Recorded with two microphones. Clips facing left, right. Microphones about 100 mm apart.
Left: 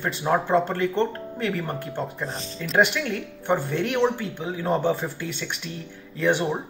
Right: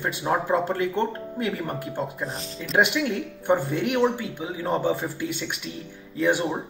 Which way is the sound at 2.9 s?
30° right (ahead or behind).